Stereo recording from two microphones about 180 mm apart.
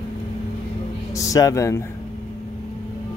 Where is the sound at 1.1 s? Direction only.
20° left (ahead or behind).